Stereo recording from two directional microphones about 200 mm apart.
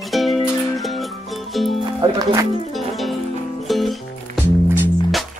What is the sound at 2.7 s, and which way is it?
Music, centre (ahead or behind).